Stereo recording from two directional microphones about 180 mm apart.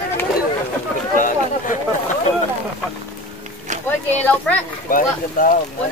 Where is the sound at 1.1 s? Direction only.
45° left (ahead or behind).